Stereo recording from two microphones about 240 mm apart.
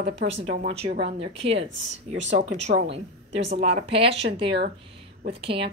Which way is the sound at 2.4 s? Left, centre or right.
Right.